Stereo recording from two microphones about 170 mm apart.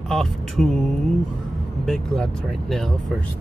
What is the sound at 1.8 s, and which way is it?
Speech, centre (ahead or behind).